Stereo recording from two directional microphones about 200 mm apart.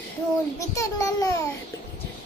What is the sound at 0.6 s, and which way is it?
Speech, 15° left (ahead or behind).